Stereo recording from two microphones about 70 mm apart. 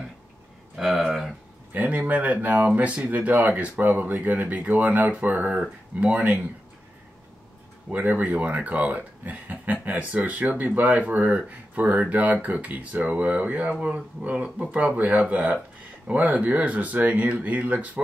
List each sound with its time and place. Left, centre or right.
0.7 s speech: centre
1.7 s speech: right
7.9 s speech: right